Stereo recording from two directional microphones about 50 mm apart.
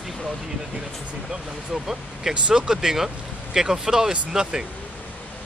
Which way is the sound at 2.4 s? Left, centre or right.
Centre.